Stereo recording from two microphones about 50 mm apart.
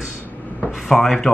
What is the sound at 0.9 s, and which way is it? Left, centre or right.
Speech, centre.